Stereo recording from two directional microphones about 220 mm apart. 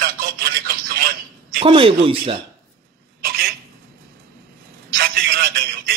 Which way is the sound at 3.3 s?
45° right (ahead or behind).